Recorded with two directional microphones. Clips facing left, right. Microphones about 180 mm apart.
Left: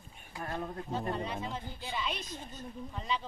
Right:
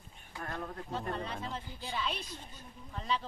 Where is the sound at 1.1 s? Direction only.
10° left (ahead or behind).